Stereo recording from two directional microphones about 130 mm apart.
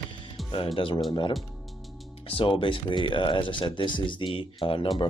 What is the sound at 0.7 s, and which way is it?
Speech, 40° left (ahead or behind).